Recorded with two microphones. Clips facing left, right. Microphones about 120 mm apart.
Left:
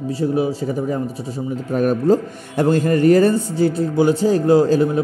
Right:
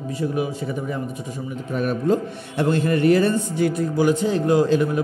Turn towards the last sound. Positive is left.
turn(degrees=35)  # may be behind; listen again after turning